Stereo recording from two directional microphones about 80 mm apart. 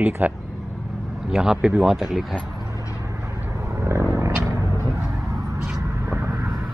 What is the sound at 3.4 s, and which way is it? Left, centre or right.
Vehicle, right.